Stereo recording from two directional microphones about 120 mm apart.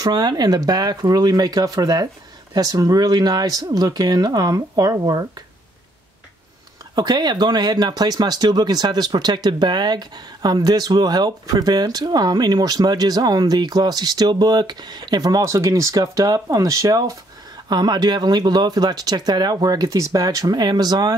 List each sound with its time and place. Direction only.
0.0 s speech: 35° right (ahead or behind)
7.0 s speech: 35° right (ahead or behind)